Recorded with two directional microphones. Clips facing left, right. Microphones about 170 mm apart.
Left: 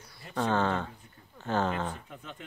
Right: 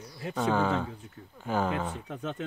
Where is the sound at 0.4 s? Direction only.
10° right (ahead or behind).